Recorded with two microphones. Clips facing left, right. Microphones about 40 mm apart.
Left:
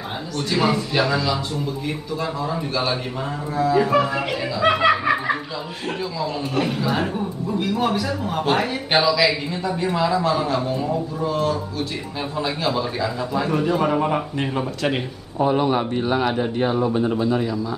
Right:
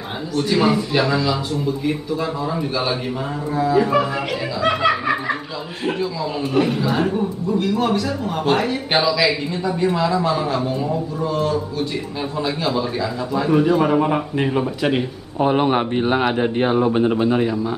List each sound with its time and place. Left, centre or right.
0.4 s speech: centre
6.5 s speech: centre
15.3 s speech: right